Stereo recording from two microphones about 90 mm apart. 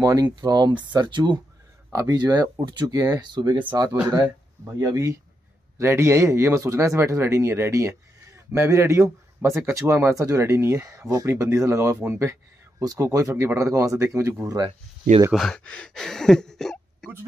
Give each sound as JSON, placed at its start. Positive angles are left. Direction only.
{"t": 0.0, "sound": "speech", "side_deg": -45}
{"t": 1.9, "sound": "speech", "side_deg": -45}
{"t": 4.0, "sound": "speech", "side_deg": -45}
{"t": 15.3, "sound": "speech", "side_deg": 5}